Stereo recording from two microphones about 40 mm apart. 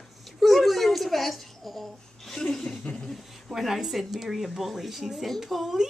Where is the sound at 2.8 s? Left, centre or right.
Left.